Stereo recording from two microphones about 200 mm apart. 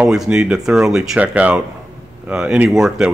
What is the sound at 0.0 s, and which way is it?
Speech, 5° right (ahead or behind).